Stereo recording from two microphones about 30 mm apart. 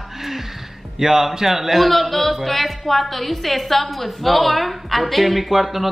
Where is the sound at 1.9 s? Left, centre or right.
Centre.